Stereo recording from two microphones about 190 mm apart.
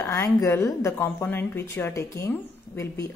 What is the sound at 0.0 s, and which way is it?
A woman's voice, 15° left (ahead or behind).